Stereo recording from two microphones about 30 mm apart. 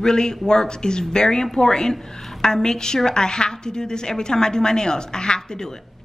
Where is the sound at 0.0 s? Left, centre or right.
Left.